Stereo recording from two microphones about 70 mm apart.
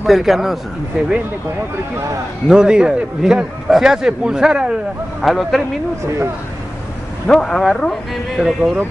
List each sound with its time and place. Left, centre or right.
0.0 s speech: centre
1.0 s a man's voice: centre
2.4 s a man's voice: centre
5.2 s speech: centre
7.2 s speech: centre
8.4 s speech: centre